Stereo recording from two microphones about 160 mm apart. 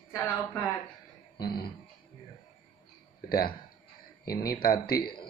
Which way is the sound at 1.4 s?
75° left (ahead or behind).